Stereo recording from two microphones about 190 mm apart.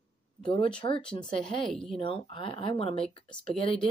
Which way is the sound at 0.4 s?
25° left (ahead or behind).